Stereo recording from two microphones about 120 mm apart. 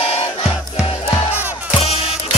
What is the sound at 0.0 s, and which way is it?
Music, 55° left (ahead or behind).